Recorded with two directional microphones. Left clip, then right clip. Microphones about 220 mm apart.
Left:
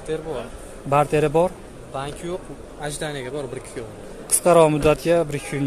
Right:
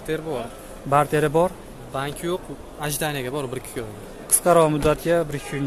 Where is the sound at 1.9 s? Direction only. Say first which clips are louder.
Right 2 dB; 35° right (ahead or behind).